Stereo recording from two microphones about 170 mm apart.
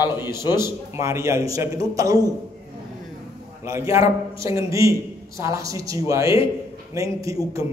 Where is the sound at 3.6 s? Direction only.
15° right (ahead or behind).